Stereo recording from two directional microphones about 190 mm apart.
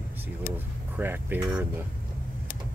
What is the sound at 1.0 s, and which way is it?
Speech, 10° right (ahead or behind).